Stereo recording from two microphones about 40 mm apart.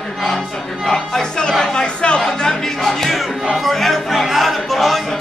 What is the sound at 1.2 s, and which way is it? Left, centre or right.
Chatter, centre.